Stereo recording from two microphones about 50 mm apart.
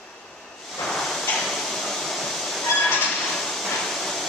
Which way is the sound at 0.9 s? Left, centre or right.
Centre.